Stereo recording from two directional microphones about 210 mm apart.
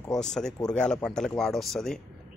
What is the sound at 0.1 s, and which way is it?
Speech, 5° left (ahead or behind).